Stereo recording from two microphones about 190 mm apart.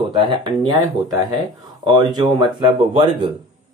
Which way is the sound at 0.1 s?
25° right (ahead or behind).